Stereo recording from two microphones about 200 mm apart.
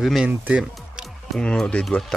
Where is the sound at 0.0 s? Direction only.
Centre (ahead or behind).